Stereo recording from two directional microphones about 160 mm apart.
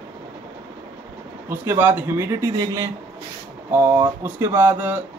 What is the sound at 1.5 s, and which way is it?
A man's voice, 15° right (ahead or behind).